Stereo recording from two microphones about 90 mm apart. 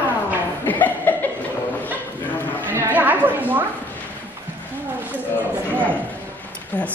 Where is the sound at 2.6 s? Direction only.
25° right (ahead or behind).